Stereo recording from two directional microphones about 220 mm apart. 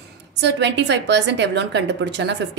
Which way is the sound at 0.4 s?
55° right (ahead or behind).